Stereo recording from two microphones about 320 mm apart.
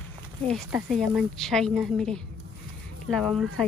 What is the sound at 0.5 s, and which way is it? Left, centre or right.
Speech, centre.